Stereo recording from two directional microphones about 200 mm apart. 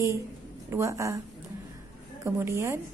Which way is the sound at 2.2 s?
15° right (ahead or behind).